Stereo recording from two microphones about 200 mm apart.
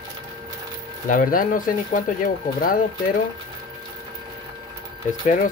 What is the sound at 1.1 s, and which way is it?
Speech, 45° left (ahead or behind).